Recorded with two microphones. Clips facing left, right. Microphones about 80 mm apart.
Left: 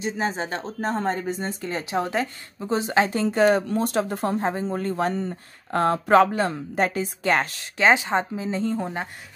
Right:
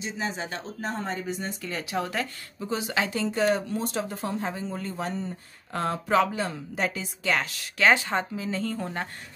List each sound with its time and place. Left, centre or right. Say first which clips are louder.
0.0 s speech: left 6 dB; left
7.8 s speech: left 3 dB; left